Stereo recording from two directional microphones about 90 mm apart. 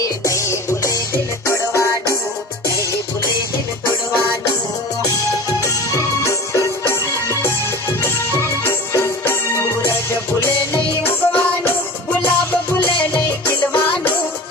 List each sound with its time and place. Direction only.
0.0 s music: 35° left (ahead or behind)
5.9 s music: 35° left (ahead or behind)
8.0 s music: 30° left (ahead or behind)
13.5 s music: 20° left (ahead or behind)